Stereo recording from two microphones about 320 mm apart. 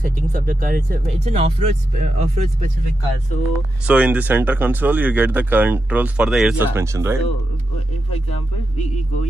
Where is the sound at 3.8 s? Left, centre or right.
Centre.